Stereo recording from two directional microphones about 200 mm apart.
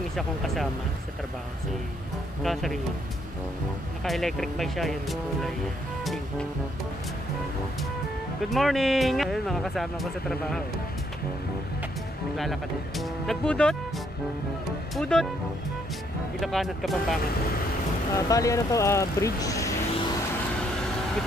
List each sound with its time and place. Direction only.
2.4 s speech: centre (ahead or behind)
4.0 s speech: centre (ahead or behind)
8.5 s speech: centre (ahead or behind)
12.4 s speech: centre (ahead or behind)
15.0 s speech: 5° left (ahead or behind)
16.3 s speech: centre (ahead or behind)
18.1 s speech: 15° left (ahead or behind)